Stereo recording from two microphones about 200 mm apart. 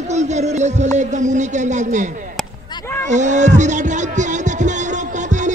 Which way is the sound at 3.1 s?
35° right (ahead or behind).